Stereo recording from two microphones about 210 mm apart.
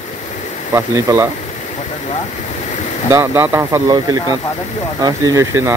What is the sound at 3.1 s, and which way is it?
Speech, 15° right (ahead or behind).